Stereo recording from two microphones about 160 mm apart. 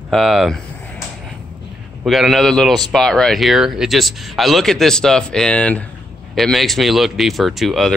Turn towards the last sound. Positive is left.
turn(degrees=0)  # may be behind; listen again after turning